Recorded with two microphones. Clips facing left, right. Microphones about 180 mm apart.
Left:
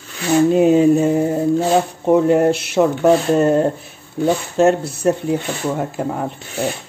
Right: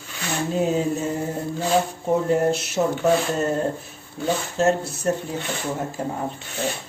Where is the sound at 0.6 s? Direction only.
65° left (ahead or behind).